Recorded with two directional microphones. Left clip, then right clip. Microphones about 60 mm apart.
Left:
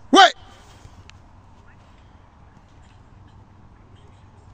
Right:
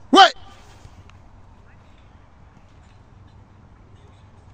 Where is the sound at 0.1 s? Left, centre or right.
Right.